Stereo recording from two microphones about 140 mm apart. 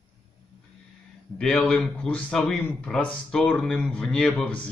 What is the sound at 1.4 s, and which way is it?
A man's voice, 5° left (ahead or behind).